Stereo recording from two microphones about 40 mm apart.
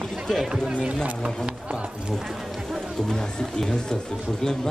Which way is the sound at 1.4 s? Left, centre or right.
Right.